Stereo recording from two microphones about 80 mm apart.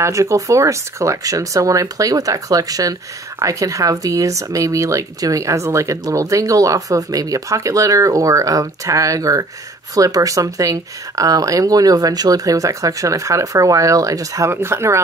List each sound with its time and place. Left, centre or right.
0.0 s speech: right
14.5 s speech: right